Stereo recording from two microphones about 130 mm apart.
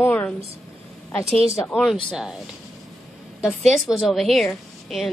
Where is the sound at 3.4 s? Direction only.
Centre (ahead or behind).